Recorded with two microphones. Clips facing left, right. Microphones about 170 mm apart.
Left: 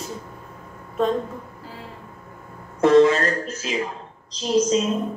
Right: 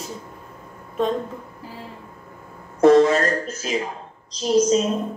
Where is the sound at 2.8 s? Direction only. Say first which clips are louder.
Right 1 dB; 40° right (ahead or behind).